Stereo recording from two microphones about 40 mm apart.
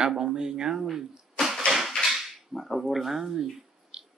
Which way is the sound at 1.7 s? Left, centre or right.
Centre.